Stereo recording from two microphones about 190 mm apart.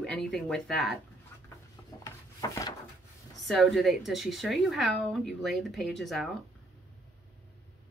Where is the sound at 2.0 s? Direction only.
15° left (ahead or behind).